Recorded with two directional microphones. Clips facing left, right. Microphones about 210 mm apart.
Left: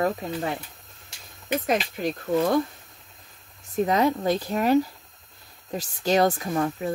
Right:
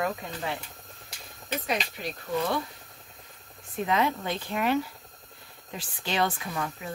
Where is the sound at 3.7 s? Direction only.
40° left (ahead or behind).